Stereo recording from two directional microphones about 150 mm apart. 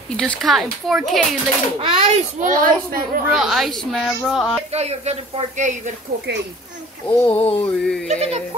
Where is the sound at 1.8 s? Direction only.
40° right (ahead or behind).